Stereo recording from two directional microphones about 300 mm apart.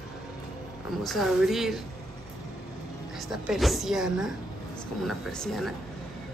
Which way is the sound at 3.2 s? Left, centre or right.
Centre.